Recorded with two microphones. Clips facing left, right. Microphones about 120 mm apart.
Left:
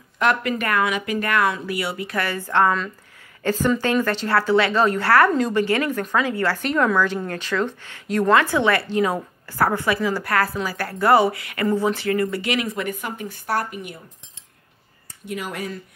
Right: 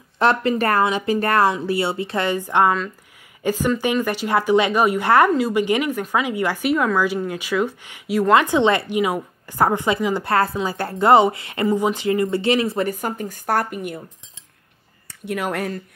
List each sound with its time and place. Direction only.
0.2 s a woman's voice: 30° right (ahead or behind); by 13.9 s 50° right (ahead or behind)
15.0 s speech: 60° right (ahead or behind)